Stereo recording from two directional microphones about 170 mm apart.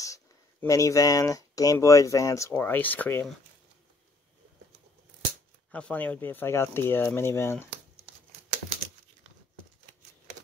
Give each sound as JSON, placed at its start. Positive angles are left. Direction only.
{"t": 0.0, "sound": "speech", "side_deg": 20}
{"t": 5.7, "sound": "speech", "side_deg": 5}